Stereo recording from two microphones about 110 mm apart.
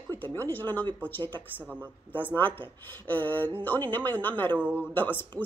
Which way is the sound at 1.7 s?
15° right (ahead or behind).